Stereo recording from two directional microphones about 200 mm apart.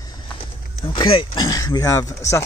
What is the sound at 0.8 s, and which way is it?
Speech, 25° left (ahead or behind).